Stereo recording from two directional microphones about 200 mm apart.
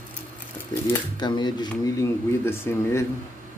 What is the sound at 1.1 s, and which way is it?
Speech, 20° left (ahead or behind).